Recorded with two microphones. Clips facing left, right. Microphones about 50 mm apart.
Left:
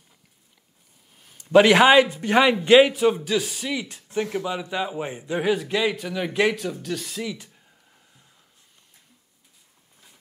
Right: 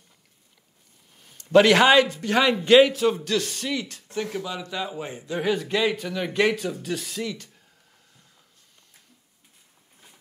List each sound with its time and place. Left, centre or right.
1.1 s speech: centre
3.8 s a man's voice: centre
5.5 s speech: centre